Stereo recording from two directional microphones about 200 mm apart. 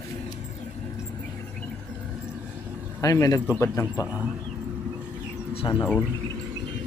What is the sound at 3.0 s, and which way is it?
A man's voice, 15° left (ahead or behind).